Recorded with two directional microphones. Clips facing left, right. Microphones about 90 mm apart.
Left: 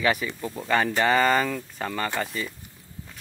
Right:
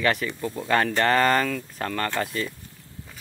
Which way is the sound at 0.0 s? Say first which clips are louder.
Right 1 dB; 5° left (ahead or behind).